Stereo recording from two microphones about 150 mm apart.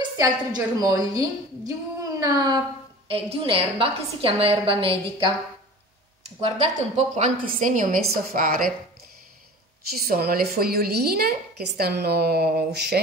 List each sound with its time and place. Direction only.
0.7 s a woman's voice: 25° right (ahead or behind)
3.1 s a woman's voice: 40° right (ahead or behind); by 8.0 s 60° right (ahead or behind)
8.1 s a woman's voice: 75° right (ahead or behind)
10.0 s a woman's voice: 90° right